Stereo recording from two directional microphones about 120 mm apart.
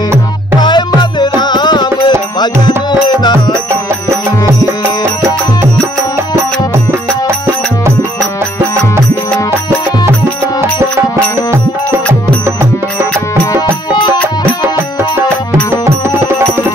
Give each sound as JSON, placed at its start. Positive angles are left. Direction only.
{"t": 0.6, "sound": "music", "side_deg": 35}
{"t": 4.1, "sound": "music", "side_deg": -25}
{"t": 10.6, "sound": "music", "side_deg": -20}
{"t": 14.6, "sound": "music", "side_deg": -20}